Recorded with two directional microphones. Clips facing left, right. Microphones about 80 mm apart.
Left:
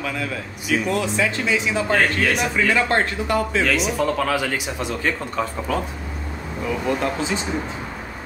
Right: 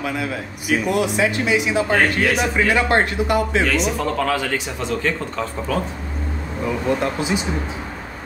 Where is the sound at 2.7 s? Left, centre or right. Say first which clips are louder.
Right 2 dB; centre.